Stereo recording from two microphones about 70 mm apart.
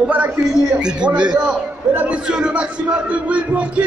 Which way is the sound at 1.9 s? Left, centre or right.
Right.